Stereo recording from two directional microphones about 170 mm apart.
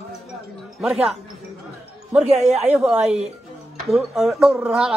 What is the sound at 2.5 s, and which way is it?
Speech, 5° right (ahead or behind).